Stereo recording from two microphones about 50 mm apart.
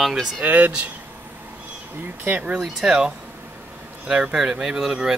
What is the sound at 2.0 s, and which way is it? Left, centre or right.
Speech, right.